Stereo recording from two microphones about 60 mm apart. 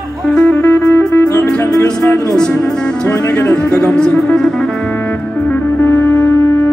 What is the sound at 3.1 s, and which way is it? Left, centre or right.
Music, left.